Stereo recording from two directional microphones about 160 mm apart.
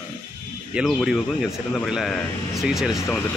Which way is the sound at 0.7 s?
Centre (ahead or behind).